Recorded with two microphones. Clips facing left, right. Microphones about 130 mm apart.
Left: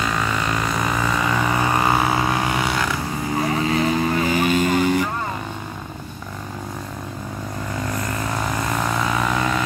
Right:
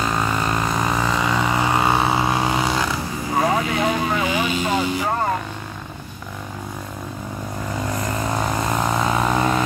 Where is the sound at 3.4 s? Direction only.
90° right.